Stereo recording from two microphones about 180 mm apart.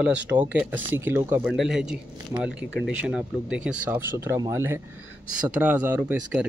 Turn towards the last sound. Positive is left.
turn(degrees=-10)  # may be behind; listen again after turning